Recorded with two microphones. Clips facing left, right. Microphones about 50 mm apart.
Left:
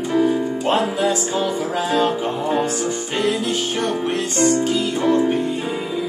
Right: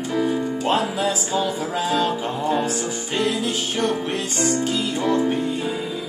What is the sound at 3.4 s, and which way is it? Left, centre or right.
Music, centre.